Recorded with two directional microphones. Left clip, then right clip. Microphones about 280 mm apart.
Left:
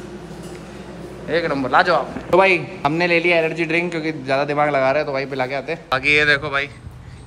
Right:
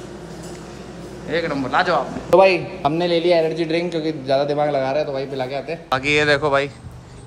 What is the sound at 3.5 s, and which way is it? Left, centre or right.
A man's voice, left.